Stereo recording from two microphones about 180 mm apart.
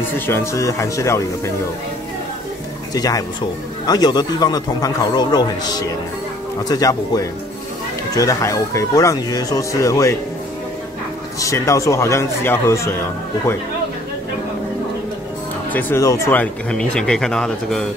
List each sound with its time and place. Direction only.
0.3 s speech: 15° left (ahead or behind)
2.9 s speech: 20° left (ahead or behind)
11.3 s speech: 15° left (ahead or behind)
15.7 s speech: 15° left (ahead or behind)